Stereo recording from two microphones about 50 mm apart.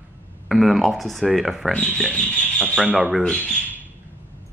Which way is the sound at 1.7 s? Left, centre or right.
Centre.